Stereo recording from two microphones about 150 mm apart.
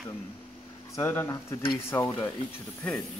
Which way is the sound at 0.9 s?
15° left (ahead or behind).